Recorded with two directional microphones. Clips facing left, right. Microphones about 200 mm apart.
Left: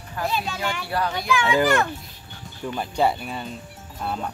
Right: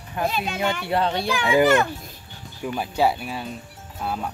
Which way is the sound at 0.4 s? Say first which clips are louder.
Right 3 dB; 20° right (ahead or behind).